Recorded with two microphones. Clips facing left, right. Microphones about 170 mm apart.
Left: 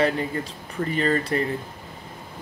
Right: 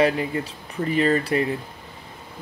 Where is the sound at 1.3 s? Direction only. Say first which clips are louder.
Right 2 dB; 15° right (ahead or behind).